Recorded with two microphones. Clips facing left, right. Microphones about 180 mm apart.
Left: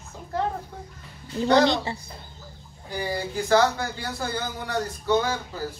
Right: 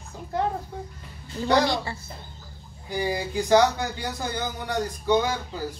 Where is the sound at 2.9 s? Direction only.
15° right (ahead or behind).